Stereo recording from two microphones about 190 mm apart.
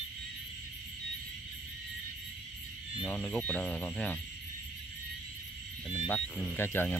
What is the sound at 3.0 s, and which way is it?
Speech, 5° left (ahead or behind).